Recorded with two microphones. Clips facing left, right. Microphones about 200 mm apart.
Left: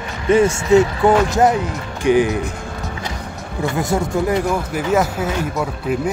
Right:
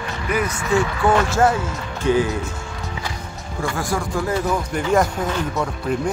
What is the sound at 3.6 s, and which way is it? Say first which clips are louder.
Speech: left 5 dB; 20° left (ahead or behind).